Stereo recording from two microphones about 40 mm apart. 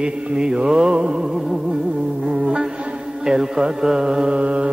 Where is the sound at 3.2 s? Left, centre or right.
Centre; by 4.7 s right.